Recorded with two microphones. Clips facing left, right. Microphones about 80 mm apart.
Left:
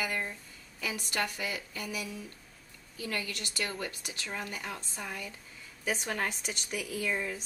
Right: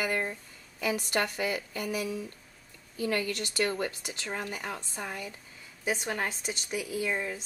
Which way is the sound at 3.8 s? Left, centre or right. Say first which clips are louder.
Right 4 dB; right.